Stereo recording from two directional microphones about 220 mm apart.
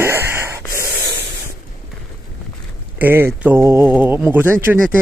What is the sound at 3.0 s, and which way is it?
Speech, 10° right (ahead or behind).